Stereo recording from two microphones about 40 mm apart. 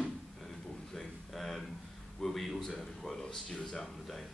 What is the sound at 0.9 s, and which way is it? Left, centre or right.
Speech, centre.